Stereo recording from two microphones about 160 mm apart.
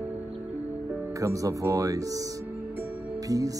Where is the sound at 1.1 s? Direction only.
20° right (ahead or behind).